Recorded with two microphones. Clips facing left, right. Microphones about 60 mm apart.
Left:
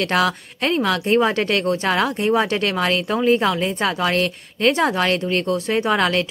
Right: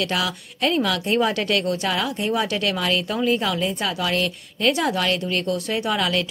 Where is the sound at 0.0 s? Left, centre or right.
Left.